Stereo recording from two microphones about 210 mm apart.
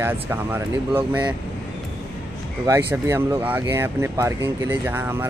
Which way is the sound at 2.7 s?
15° right (ahead or behind).